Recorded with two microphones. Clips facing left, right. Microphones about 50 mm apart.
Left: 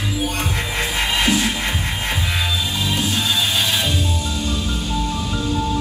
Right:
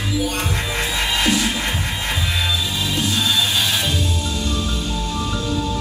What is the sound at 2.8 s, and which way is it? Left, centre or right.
Music, left.